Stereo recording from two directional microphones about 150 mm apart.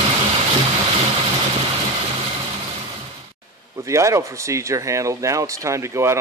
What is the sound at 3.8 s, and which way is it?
Speech, 20° right (ahead or behind).